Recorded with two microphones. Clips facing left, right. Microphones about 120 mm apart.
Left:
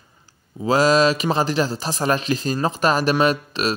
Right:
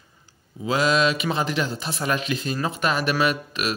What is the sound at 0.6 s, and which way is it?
Speech, 40° left (ahead or behind).